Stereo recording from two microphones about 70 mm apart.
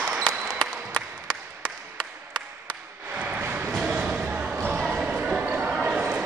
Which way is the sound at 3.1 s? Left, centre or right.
Centre.